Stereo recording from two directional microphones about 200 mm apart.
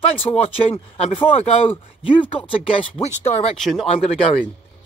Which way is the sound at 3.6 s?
Centre (ahead or behind).